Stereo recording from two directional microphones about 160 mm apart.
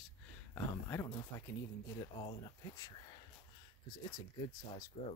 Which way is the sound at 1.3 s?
15° left (ahead or behind).